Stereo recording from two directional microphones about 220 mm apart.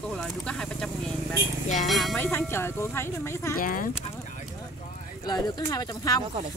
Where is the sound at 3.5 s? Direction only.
40° left (ahead or behind).